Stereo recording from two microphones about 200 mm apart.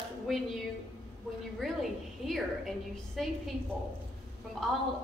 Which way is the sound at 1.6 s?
Centre (ahead or behind).